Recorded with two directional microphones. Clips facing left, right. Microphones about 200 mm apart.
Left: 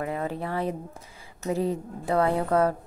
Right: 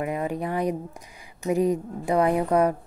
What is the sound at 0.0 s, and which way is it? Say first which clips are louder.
Speech: right 3 dB; 15° right (ahead or behind).